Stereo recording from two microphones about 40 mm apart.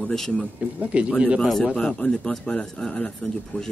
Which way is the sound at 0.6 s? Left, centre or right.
Right.